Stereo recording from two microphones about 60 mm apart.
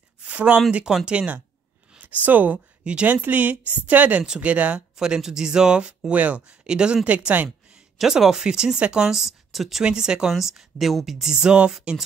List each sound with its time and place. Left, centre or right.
0.2 s a sound: right
0.7 s a woman's voice: right
3.2 s a woman's voice: right
4.9 s a woman's voice: centre
7.7 s speech: centre
9.8 s speech: centre